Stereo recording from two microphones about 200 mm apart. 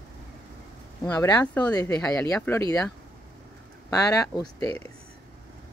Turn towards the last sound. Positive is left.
turn(degrees=10)  # may be behind; listen again after turning